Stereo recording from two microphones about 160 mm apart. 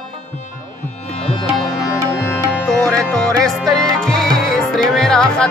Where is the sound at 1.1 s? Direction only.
35° left (ahead or behind).